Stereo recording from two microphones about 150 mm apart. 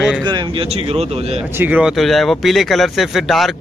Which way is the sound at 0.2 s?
35° right (ahead or behind).